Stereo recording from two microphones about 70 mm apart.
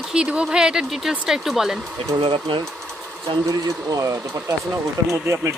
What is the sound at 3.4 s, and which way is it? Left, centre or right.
Speech, right.